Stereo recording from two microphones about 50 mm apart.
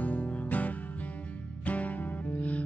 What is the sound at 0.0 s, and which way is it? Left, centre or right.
Music, left.